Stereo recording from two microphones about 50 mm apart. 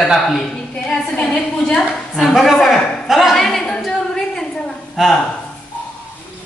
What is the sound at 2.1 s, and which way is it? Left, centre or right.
Speech, centre.